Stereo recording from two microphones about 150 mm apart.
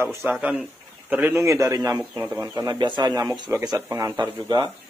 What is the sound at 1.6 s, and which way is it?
Speech, 25° right (ahead or behind).